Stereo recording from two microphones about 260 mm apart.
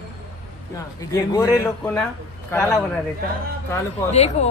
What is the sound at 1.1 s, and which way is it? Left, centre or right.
Speech, centre.